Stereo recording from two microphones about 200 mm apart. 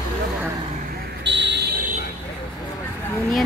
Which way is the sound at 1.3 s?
60° right (ahead or behind).